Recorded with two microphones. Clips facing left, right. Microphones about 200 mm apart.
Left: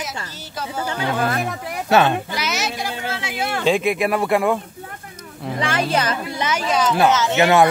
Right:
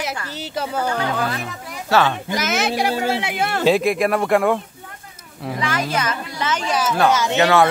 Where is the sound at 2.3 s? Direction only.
50° right (ahead or behind).